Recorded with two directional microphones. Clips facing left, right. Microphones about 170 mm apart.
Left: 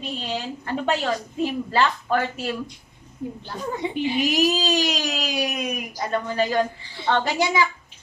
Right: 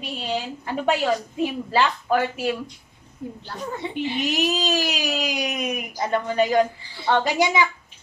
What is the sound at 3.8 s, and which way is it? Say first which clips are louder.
Speech: left 4 dB; 15° left (ahead or behind).